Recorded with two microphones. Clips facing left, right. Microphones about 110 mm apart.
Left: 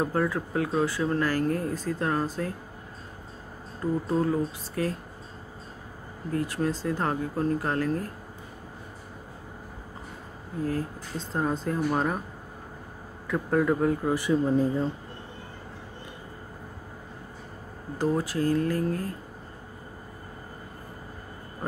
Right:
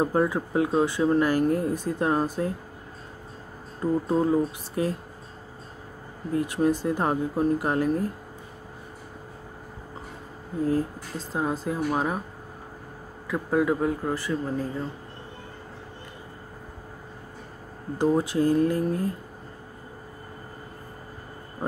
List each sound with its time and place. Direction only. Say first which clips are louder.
0.0 s speech: right 3 dB; 20° right (ahead or behind)
3.8 s speech: right 3 dB; 20° right (ahead or behind)
6.3 s speech: right 4 dB; 20° right (ahead or behind)
11.1 s speech: even; 5° right (ahead or behind)
13.3 s speech: right 1 dB; 5° right (ahead or behind)
14.1 s speech: left 5 dB; 15° left (ahead or behind)
17.9 s speech: right 4 dB; 20° right (ahead or behind)